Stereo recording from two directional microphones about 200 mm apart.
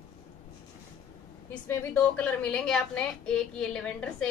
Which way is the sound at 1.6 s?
10° left (ahead or behind).